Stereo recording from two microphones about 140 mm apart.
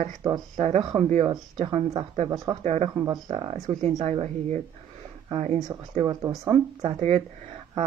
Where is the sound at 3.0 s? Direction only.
30° right (ahead or behind).